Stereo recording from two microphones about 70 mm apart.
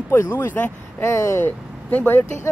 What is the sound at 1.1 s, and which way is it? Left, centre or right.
Speech, left.